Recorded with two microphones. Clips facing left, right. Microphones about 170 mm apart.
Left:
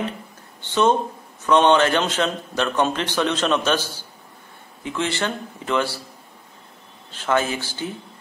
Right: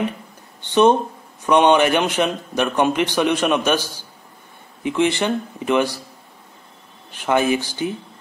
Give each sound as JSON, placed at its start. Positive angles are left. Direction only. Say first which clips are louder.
{"t": 0.6, "sound": "a man's voice", "louder": "right 4 dB", "side_deg": -15}
{"t": 7.1, "sound": "a man's voice", "louder": "right 4 dB", "side_deg": -15}